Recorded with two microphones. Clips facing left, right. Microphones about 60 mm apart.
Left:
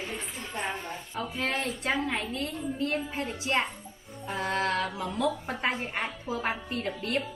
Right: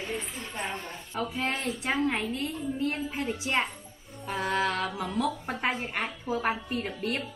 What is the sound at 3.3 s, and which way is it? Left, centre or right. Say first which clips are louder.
Speech: even; centre.